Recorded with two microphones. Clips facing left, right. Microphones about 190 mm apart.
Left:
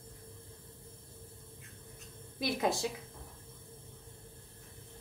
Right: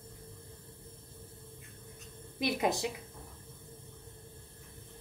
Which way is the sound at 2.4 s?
20° right (ahead or behind).